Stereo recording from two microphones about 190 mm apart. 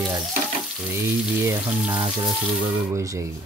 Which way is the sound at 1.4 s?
5° right (ahead or behind).